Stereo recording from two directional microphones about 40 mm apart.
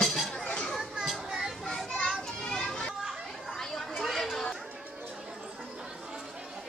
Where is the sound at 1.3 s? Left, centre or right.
Centre.